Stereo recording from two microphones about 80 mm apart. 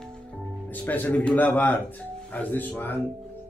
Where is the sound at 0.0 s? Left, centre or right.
Centre.